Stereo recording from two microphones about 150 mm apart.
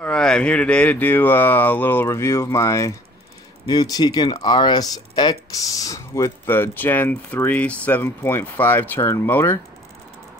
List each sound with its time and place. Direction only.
0.0 s speech: 5° left (ahead or behind)